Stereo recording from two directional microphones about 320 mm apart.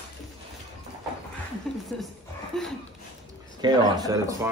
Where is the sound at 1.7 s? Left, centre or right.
Centre.